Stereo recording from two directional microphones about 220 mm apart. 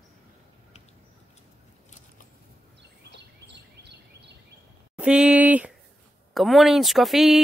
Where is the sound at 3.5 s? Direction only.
50° right (ahead or behind).